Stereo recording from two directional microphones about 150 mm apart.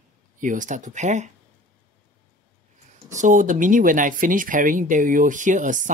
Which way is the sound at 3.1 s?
55° right (ahead or behind).